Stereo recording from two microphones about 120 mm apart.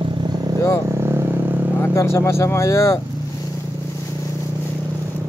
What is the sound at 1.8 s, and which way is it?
Speech, 25° left (ahead or behind).